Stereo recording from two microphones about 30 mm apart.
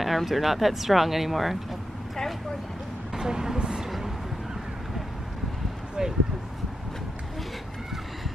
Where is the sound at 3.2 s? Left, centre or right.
Right.